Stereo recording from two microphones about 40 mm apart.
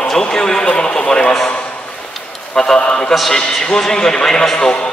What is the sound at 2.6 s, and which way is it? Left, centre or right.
A man's voice, centre.